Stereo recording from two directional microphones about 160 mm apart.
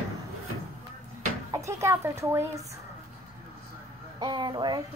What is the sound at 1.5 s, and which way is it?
A woman's voice, 20° right (ahead or behind).